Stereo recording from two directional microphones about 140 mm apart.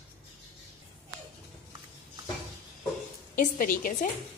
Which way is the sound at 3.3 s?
80° left.